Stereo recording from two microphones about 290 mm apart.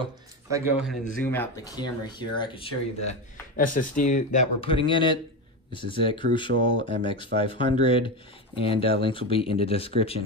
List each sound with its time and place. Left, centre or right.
0.0 s a sound: centre
1.2 s speech: centre
6.5 s speech: right
7.0 s speech: centre